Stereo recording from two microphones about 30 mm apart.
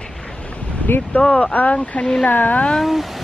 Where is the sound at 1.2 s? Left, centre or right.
Left.